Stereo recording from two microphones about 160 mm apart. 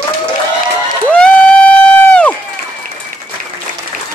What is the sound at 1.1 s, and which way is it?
Crowd, 5° left (ahead or behind).